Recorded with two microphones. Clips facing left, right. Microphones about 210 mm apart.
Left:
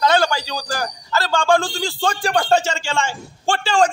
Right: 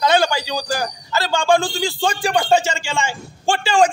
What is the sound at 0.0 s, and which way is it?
A man's voice, 20° right (ahead or behind).